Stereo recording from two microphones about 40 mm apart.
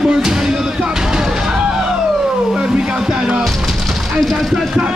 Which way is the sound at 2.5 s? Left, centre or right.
Right.